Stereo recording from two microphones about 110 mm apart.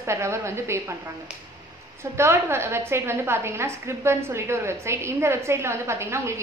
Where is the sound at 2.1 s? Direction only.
25° right (ahead or behind).